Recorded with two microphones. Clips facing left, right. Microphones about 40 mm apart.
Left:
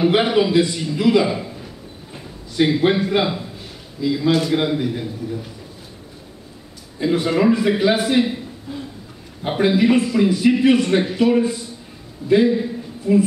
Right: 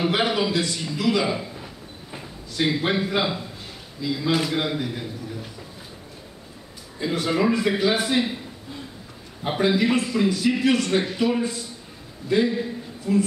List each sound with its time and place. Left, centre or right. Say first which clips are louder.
0.1 s a man's voice: left 6 dB; centre
1.2 s a man's voice: left 4 dB; centre
2.5 s a man's voice: left 6 dB; centre
7.0 s a man's voice: left 5 dB; centre
9.4 s a man's voice: left 4 dB; centre